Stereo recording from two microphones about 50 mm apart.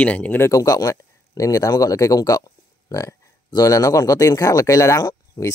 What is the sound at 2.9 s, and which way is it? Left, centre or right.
Speech, left.